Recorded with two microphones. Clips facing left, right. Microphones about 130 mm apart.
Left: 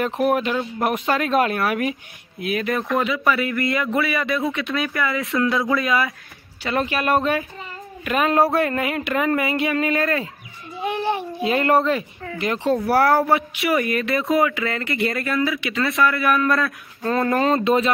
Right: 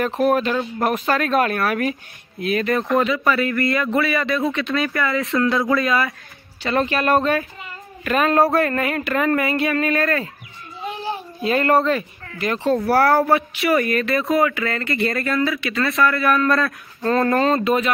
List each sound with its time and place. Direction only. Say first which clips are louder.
0.0 s speech: right 2 dB; 15° left (ahead or behind)
2.4 s speech: right 3 dB; 5° left (ahead or behind)
3.9 s speech: right 2 dB; 5° left (ahead or behind)
8.0 s speech: right 1 dB; 15° left (ahead or behind)
10.8 s a child's voice: left 5 dB; 60° left (ahead or behind)
11.4 s speech: right 1 dB; 20° left (ahead or behind)
13.0 s speech: right 1 dB; centre (ahead or behind)
13.8 s speech: right 1 dB; 20° left (ahead or behind)
15.6 s speech: right 1 dB; 20° left (ahead or behind)
16.3 s speech: right 1 dB; centre (ahead or behind)
17.4 s speech: even; 20° left (ahead or behind)